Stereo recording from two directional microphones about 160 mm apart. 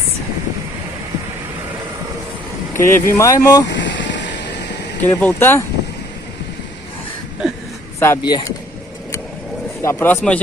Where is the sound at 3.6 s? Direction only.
90° left.